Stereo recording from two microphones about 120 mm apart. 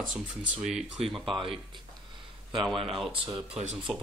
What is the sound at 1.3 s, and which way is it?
Speech, 50° right (ahead or behind).